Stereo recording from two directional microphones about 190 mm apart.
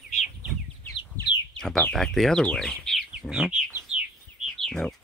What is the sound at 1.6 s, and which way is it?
Speech, 5° left (ahead or behind).